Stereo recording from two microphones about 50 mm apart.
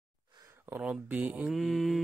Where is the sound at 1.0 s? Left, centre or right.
Right.